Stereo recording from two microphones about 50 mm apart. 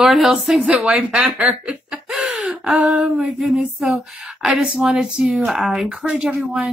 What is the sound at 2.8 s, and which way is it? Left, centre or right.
Speech, right.